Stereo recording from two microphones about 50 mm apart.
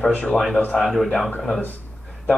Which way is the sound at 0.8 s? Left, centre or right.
Centre.